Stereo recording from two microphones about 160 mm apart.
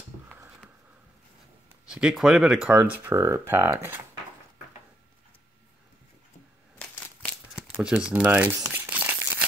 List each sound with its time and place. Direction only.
1.9 s speech: 5° right (ahead or behind)
7.5 s speech: 5° right (ahead or behind)